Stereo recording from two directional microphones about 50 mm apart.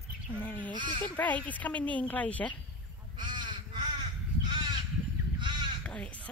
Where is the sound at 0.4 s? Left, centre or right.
Left.